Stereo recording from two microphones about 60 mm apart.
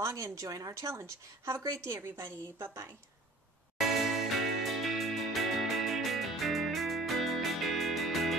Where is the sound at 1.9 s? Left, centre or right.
Right.